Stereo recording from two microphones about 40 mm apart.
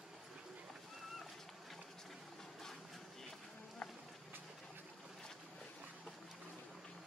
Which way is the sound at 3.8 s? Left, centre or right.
Centre.